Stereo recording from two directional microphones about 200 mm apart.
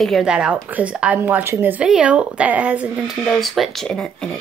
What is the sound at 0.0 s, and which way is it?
A woman's voice, centre (ahead or behind).